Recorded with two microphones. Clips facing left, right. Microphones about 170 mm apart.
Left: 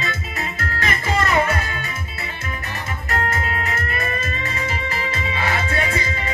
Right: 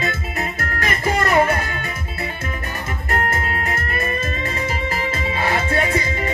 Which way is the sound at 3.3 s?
45° right (ahead or behind).